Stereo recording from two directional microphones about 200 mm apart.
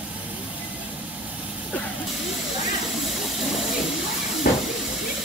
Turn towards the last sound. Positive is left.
turn(degrees=45)  # may be behind; listen again after turning